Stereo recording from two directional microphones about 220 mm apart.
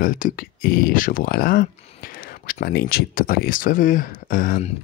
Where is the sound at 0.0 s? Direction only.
40° left (ahead or behind).